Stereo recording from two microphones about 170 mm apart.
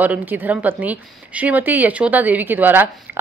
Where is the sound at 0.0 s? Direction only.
10° right (ahead or behind).